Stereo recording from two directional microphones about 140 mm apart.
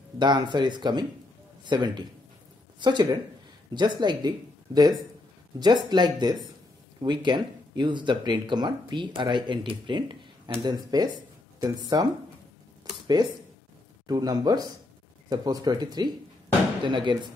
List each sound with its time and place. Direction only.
0.2 s a man's voice: 30° right (ahead or behind)
5.6 s speech: 30° right (ahead or behind)